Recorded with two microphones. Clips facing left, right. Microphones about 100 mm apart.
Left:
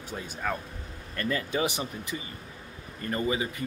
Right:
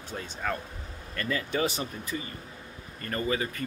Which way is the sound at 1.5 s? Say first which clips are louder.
Even; 20° left (ahead or behind).